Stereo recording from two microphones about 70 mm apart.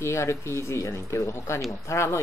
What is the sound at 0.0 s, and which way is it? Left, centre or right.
Speech, left.